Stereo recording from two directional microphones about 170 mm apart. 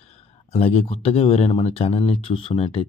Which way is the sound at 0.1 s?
35° left (ahead or behind).